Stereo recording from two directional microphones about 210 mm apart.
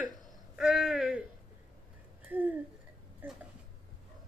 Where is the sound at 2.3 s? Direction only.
10° right (ahead or behind).